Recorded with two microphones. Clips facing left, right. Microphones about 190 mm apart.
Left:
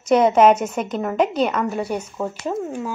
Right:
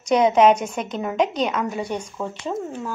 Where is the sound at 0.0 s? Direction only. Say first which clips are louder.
Left 2 dB; 5° left (ahead or behind).